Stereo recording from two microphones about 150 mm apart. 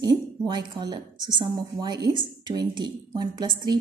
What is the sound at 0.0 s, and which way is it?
Speech, 30° right (ahead or behind).